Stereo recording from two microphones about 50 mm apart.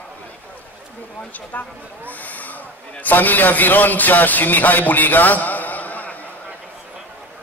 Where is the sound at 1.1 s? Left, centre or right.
Left.